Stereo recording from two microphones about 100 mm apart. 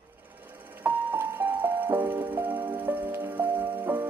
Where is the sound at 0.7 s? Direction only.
20° right (ahead or behind).